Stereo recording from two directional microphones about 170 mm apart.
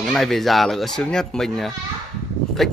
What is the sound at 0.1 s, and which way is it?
Speech, centre (ahead or behind).